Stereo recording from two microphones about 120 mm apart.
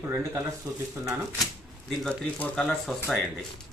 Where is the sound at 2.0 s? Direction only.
5° left (ahead or behind).